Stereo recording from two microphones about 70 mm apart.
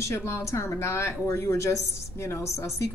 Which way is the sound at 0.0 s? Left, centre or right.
Left.